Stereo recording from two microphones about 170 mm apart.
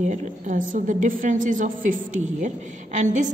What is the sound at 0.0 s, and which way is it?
Speech, 45° right (ahead or behind).